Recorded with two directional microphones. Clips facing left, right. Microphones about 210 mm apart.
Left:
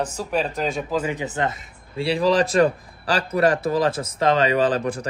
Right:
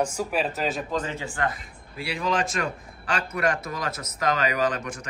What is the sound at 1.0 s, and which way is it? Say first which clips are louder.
A man's voice: left 5 dB; 20° left (ahead or behind).